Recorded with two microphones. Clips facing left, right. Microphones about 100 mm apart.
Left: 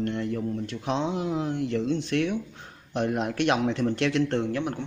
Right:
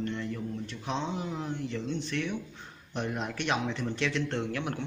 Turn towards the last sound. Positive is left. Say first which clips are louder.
# left 5 dB
turn(degrees=25)  # may be behind; listen again after turning